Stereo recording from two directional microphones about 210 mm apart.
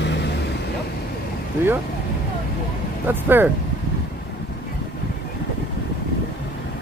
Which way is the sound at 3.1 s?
10° right (ahead or behind).